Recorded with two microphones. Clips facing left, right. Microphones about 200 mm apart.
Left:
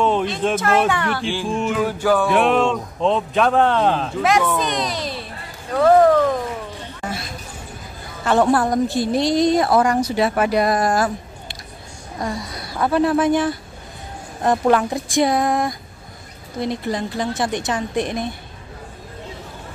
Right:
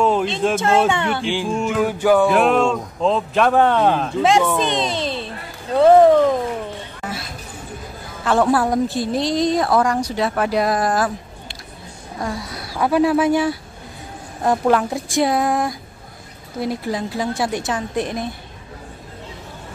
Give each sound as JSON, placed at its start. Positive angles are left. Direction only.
{"t": 0.0, "sound": "speech", "side_deg": 0}
{"t": 0.6, "sound": "speech", "side_deg": -25}
{"t": 1.5, "sound": "speech", "side_deg": 0}
{"t": 1.9, "sound": "speech", "side_deg": -15}
{"t": 2.2, "sound": "speech", "side_deg": 0}
{"t": 4.2, "sound": "speech", "side_deg": -25}
{"t": 8.3, "sound": "speech", "side_deg": 0}
{"t": 12.2, "sound": "speech", "side_deg": -5}